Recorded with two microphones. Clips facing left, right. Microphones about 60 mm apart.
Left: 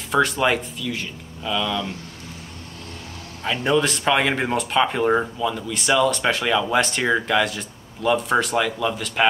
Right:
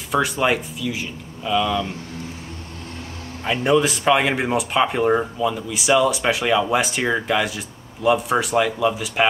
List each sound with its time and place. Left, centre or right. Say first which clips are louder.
0.1 s speech: even; centre
3.4 s speech: right 2 dB; centre